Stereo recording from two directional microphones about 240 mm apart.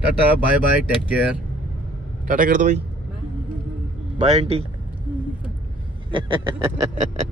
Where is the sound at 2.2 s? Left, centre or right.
Right.